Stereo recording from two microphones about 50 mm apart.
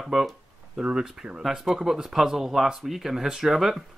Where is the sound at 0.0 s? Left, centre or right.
Centre.